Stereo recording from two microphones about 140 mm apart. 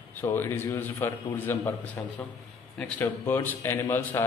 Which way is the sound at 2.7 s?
10° left (ahead or behind).